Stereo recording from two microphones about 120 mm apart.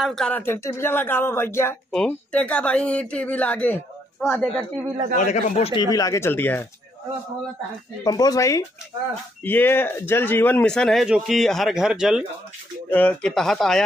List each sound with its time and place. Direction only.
0.0 s speech: 5° left (ahead or behind)
0.3 s speech: 20° left (ahead or behind)
1.9 s speech: 10° left (ahead or behind)
5.1 s speech: 80° left
5.7 s speech: 40° left (ahead or behind); by 6.7 s 15° left (ahead or behind)
8.0 s speech: 30° left (ahead or behind)
9.4 s speech: 15° left (ahead or behind); by 12.3 s 5° right (ahead or behind)
12.9 s speech: 10° left (ahead or behind)